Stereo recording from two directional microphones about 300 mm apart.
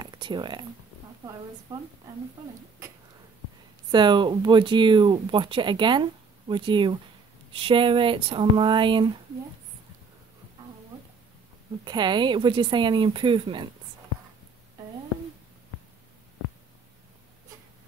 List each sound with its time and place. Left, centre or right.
0.0 s speech: centre
1.7 s speech: centre
3.9 s speech: centre
11.8 s speech: centre